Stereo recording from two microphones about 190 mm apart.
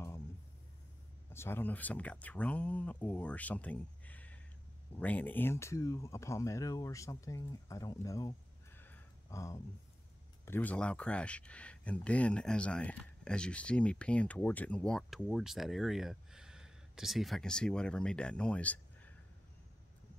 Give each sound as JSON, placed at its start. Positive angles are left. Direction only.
{"t": 1.3, "sound": "speech", "side_deg": 10}